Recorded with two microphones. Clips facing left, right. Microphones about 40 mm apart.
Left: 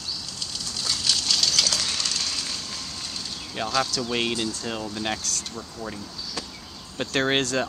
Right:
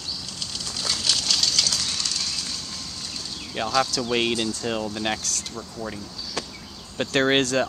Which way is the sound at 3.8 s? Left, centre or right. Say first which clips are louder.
Right 3 dB; centre.